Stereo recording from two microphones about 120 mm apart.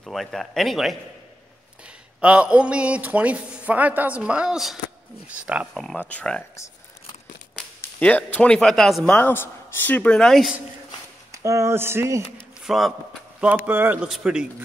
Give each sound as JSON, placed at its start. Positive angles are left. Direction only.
{"t": 0.0, "sound": "speech", "side_deg": 0}
{"t": 2.1, "sound": "speech", "side_deg": -10}
{"t": 5.8, "sound": "a man's voice", "side_deg": 5}
{"t": 8.0, "sound": "a man's voice", "side_deg": 10}
{"t": 11.3, "sound": "speech", "side_deg": -25}
{"t": 12.6, "sound": "speech", "side_deg": 0}
{"t": 13.7, "sound": "speech", "side_deg": -15}
{"t": 14.0, "sound": "speech", "side_deg": -5}